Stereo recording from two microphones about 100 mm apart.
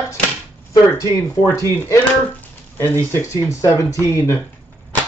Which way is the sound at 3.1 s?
30° left (ahead or behind).